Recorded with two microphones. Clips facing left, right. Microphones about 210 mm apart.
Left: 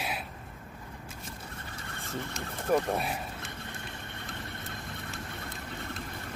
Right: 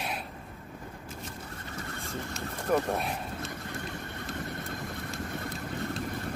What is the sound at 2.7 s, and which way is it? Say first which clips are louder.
Speech: even; 5° left (ahead or behind).